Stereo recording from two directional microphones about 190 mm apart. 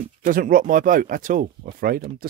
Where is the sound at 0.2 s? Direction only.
45° right (ahead or behind).